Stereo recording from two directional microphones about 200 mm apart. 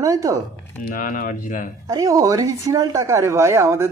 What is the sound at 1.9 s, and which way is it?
Speech, 15° right (ahead or behind).